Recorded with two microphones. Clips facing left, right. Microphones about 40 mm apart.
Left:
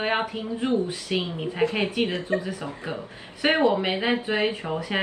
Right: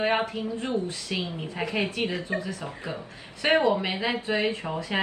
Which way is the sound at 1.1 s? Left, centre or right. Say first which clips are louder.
Left 5 dB; left.